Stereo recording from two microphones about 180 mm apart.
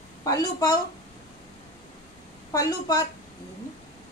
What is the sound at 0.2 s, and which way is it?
Speech, 20° left (ahead or behind).